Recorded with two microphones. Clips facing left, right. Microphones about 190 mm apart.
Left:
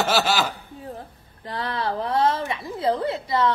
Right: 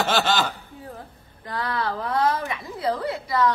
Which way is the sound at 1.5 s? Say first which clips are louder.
Even; 25° left (ahead or behind).